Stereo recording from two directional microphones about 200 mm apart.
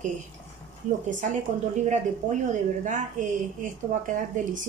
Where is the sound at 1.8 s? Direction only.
35° right (ahead or behind).